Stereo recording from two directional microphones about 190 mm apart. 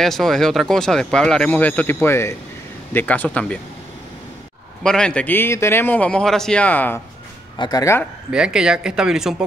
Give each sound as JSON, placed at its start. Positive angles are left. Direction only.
{"t": 0.0, "sound": "a man's voice", "side_deg": 0}
{"t": 4.8, "sound": "a man's voice", "side_deg": 5}
{"t": 7.5, "sound": "speech", "side_deg": 20}
{"t": 8.3, "sound": "speech", "side_deg": -5}